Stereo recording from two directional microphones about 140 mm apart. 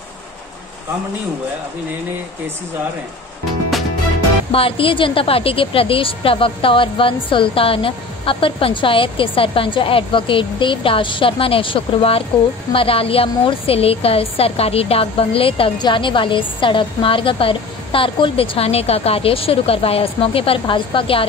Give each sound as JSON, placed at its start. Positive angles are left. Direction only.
{"t": 4.5, "sound": "a woman's voice", "side_deg": 40}